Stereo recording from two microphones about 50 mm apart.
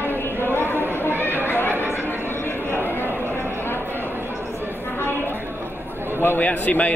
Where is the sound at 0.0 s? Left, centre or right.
Right.